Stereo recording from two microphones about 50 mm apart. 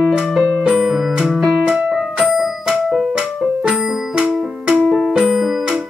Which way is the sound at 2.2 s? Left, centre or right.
Centre.